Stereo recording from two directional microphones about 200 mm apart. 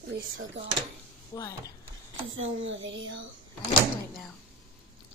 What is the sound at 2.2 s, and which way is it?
Speech, 75° right (ahead or behind).